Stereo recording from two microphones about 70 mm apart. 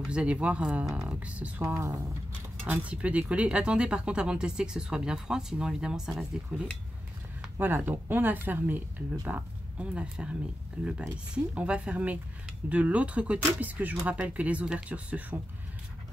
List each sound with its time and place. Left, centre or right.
0.0 s speech: centre
7.5 s speech: right
9.3 s speech: centre